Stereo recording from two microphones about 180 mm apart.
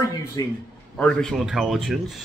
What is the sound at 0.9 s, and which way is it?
Speech, 5° left (ahead or behind).